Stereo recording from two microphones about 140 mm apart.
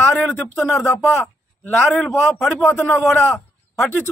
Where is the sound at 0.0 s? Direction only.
15° left (ahead or behind).